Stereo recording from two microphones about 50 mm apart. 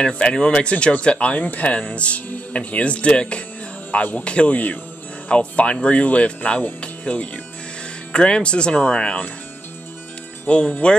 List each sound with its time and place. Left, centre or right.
0.0 s speech: centre
10.4 s speech: left